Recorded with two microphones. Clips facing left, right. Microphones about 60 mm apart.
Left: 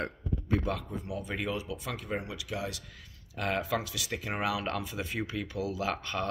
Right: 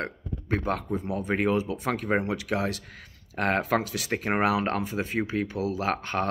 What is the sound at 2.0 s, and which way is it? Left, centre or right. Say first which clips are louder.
Speech: right 9 dB; right.